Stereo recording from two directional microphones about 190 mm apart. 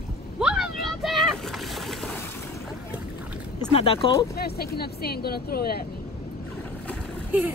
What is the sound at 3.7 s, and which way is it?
Speech, 30° left (ahead or behind).